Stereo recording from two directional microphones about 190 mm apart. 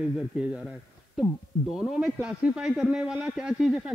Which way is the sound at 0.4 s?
5° right (ahead or behind).